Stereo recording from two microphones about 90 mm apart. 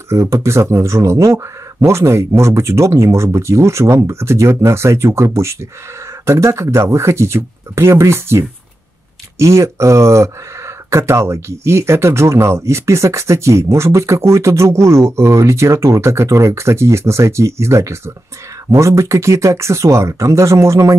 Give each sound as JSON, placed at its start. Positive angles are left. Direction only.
{"t": 0.1, "sound": "speech", "side_deg": -35}